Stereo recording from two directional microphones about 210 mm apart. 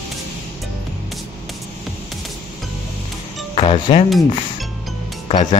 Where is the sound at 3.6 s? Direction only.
25° left (ahead or behind).